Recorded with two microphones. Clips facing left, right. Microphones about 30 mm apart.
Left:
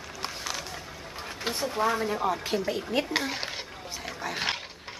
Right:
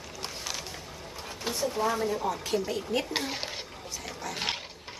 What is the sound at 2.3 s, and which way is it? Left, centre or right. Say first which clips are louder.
Dishes: left 1 dB; centre.